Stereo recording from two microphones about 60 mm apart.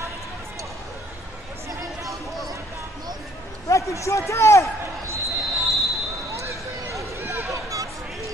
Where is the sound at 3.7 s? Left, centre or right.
Left.